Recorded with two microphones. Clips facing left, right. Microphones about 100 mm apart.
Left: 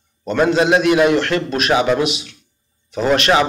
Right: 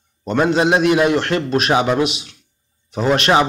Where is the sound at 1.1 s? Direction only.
40° right (ahead or behind).